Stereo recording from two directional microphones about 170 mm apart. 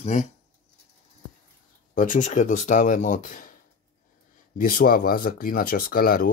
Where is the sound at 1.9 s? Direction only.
50° left (ahead or behind).